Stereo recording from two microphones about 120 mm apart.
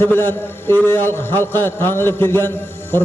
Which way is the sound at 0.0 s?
20° left (ahead or behind).